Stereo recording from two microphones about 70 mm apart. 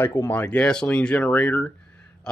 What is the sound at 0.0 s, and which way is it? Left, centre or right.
Speech, left.